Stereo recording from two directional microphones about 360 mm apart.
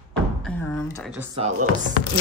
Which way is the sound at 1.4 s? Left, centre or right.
Centre.